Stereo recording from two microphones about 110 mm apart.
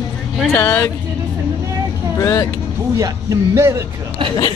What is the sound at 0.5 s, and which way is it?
Speech, 20° left (ahead or behind).